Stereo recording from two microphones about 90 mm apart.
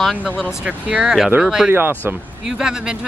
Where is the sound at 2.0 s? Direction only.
20° right (ahead or behind).